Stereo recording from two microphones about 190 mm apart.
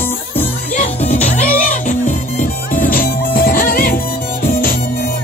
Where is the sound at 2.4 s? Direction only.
45° left (ahead or behind).